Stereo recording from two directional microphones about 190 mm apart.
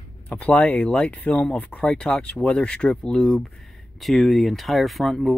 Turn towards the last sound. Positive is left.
turn(degrees=0)  # may be behind; listen again after turning